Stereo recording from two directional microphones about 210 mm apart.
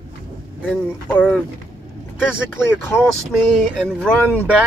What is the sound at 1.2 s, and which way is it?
Speech, 5° left (ahead or behind).